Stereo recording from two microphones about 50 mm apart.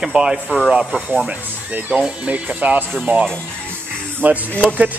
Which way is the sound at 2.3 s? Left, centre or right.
Right.